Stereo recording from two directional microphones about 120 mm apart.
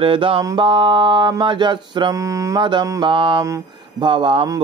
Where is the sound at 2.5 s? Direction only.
40° right (ahead or behind).